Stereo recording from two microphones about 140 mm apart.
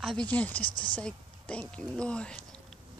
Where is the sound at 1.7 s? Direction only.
5° left (ahead or behind).